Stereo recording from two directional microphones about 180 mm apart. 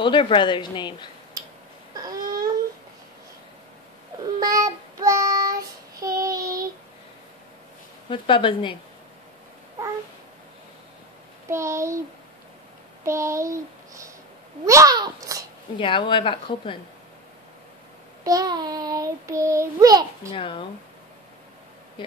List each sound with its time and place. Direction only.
0.0 s a woman's voice: 25° left (ahead or behind)
2.0 s a sound: 20° right (ahead or behind)
4.4 s child singing: 20° right (ahead or behind)
8.1 s a woman's voice: 30° left (ahead or behind)
11.5 s speech: 15° right (ahead or behind)
13.0 s speech: 15° right (ahead or behind)
14.6 s child singing: 15° right (ahead or behind)
15.8 s a woman's voice: 30° left (ahead or behind)
18.2 s child singing: 20° right (ahead or behind)
20.3 s a woman's voice: 30° left (ahead or behind)